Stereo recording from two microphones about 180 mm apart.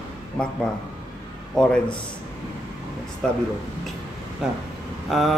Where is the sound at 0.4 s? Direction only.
5° left (ahead or behind).